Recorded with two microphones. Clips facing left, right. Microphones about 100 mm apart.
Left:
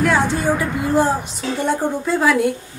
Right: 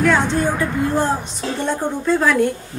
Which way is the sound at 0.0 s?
5° left (ahead or behind).